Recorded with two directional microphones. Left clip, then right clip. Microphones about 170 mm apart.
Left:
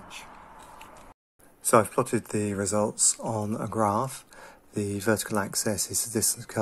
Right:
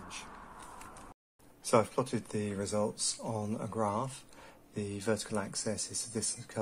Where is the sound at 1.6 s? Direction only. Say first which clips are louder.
Left 7 dB; 25° left (ahead or behind).